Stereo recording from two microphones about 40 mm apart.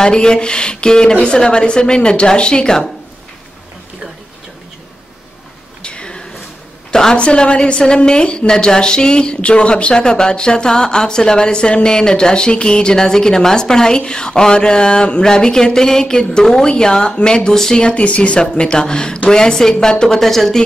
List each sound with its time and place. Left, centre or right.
0.0 s a woman's voice: centre
5.8 s a sound: left
7.2 s a woman's voice: left
17.8 s a woman's voice: left
20.2 s speech: centre